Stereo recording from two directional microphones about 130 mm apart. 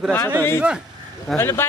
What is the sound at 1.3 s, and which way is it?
Speech, 20° left (ahead or behind).